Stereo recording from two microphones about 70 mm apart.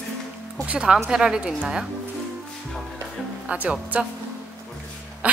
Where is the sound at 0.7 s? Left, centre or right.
Centre.